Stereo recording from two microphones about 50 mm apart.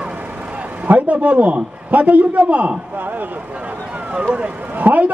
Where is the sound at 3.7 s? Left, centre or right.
Right.